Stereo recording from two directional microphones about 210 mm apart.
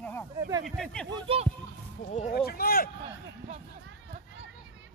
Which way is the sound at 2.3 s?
45° left (ahead or behind).